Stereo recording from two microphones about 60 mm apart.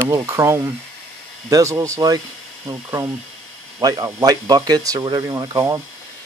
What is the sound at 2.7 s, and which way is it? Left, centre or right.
Speech, right.